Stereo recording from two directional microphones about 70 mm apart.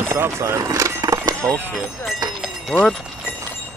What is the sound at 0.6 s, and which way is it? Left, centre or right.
Horse, right.